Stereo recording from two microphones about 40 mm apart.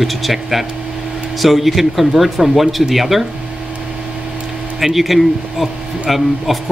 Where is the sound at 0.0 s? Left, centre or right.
Centre.